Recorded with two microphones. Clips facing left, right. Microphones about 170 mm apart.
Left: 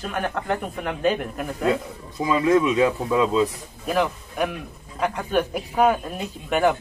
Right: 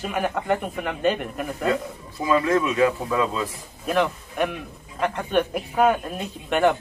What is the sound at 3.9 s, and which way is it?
Speech, centre (ahead or behind).